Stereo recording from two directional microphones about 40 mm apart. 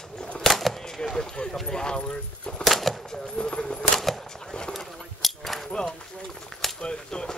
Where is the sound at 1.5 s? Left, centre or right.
Centre.